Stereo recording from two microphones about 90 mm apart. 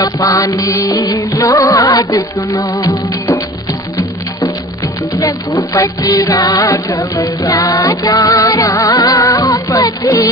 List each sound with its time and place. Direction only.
0.0 s music: 40° left (ahead or behind)
5.5 s music: 40° left (ahead or behind)